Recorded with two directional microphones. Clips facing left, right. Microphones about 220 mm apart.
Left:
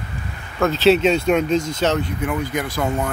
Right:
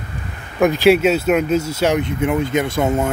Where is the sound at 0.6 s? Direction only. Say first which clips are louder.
Right 2 dB; 15° right (ahead or behind).